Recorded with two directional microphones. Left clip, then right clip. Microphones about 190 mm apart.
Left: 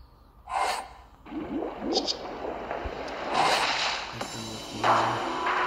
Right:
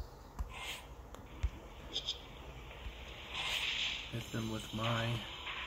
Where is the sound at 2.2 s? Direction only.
45° left (ahead or behind).